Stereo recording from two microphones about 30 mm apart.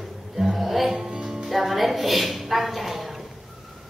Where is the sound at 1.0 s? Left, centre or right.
Centre.